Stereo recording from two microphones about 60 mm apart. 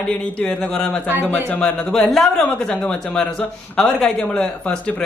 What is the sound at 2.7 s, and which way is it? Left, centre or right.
Speech, left.